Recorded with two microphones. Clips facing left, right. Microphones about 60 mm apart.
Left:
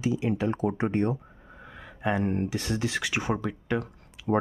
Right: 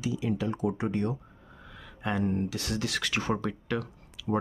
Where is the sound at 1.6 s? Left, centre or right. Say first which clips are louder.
Left 5 dB; left.